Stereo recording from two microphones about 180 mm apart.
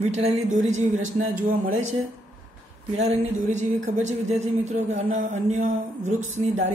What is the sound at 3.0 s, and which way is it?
Speech, 40° right (ahead or behind).